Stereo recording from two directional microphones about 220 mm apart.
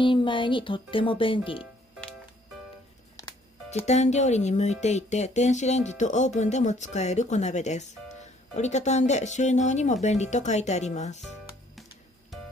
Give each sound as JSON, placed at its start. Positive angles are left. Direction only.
{"t": 0.0, "sound": "speech", "side_deg": 20}
{"t": 3.8, "sound": "speech", "side_deg": 30}
{"t": 12.3, "sound": "music", "side_deg": 0}